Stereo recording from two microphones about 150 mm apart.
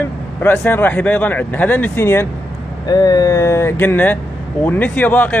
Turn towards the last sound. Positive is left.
turn(degrees=10)  # may be behind; listen again after turning